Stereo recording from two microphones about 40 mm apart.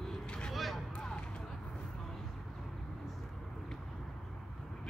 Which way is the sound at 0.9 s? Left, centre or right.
Left.